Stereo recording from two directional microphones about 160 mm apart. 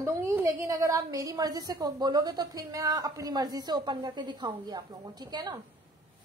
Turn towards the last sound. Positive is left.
turn(degrees=-25)  # may be behind; listen again after turning